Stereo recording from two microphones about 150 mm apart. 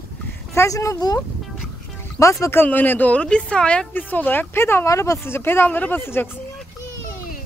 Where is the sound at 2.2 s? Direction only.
20° left (ahead or behind).